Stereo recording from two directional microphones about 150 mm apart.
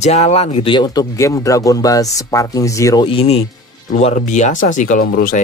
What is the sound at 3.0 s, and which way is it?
Speech, 40° left (ahead or behind).